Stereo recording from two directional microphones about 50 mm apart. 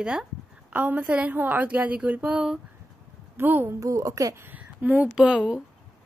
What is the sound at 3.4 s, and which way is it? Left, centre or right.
Speech, right.